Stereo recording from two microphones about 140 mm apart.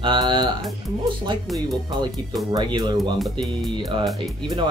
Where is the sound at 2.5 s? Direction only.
30° right (ahead or behind).